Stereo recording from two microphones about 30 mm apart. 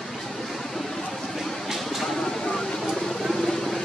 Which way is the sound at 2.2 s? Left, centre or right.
Left.